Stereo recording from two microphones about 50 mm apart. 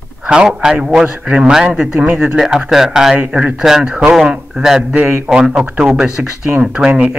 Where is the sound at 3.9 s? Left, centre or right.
Centre.